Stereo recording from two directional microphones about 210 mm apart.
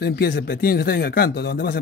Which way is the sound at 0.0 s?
50° left (ahead or behind).